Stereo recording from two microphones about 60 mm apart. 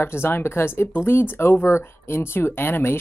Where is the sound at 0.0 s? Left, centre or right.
Left.